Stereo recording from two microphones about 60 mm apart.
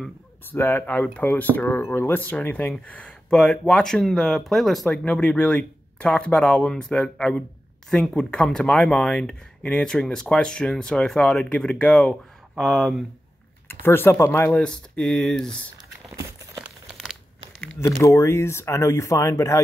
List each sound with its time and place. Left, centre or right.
0.5 s speech: left
2.7 s speech: centre
4.8 s speech: centre
12.5 s speech: centre
13.7 s speech: left
14.5 s speech: centre
17.7 s speech: left